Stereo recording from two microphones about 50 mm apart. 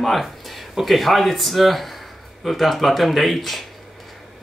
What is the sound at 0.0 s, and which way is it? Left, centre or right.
Speech, centre.